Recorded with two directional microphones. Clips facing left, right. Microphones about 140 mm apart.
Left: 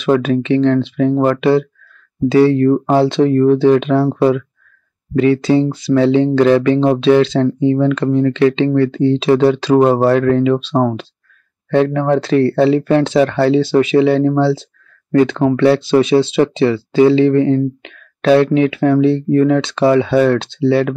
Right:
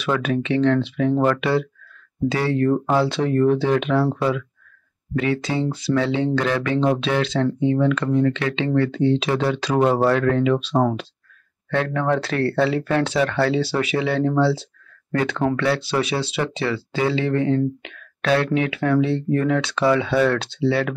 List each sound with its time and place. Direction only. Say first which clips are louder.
0.1 s speech: left 8 dB; 30° left (ahead or behind)